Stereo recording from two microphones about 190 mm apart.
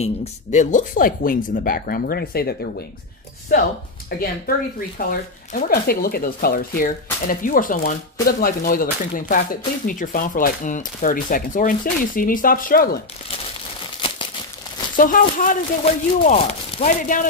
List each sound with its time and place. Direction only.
0.0 s speech: 35° left (ahead or behind); by 2.7 s 55° left (ahead or behind)
3.5 s speech: 45° left (ahead or behind)
15.0 s speech: 45° left (ahead or behind)